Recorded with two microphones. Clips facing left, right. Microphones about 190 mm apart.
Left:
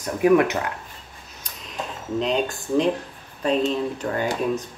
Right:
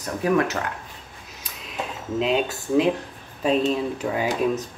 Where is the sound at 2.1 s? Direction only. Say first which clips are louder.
Right 1 dB; 5° right (ahead or behind).